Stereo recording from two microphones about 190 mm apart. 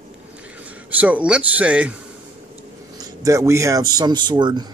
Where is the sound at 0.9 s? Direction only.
10° right (ahead or behind).